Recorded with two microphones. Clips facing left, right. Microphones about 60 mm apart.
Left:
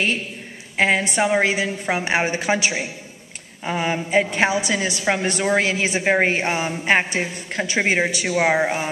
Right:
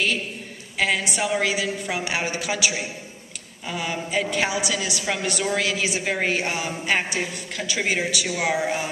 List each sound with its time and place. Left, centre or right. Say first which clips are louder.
0.7 s a woman's voice: left 5 dB; left